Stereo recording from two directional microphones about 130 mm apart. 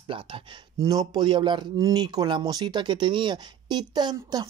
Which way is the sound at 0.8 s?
30° right (ahead or behind).